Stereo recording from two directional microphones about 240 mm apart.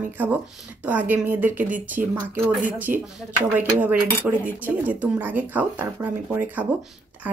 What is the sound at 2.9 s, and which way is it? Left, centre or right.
Speech, right.